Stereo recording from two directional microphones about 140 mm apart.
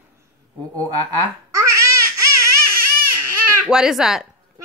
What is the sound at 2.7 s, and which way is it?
Baby cry, 90° right.